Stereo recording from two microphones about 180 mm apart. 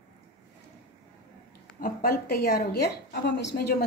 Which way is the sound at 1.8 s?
55° left (ahead or behind).